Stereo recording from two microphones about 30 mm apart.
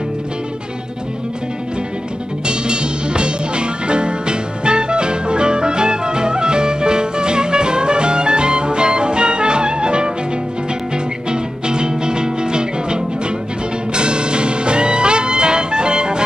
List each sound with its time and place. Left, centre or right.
2.4 s music: right
11.2 s music: right